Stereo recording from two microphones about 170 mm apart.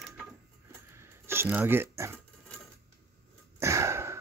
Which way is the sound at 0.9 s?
15° right (ahead or behind).